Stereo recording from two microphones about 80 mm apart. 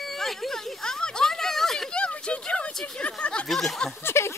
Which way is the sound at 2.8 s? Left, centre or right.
Centre.